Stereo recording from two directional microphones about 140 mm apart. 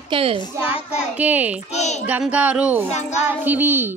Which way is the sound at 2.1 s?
10° right (ahead or behind).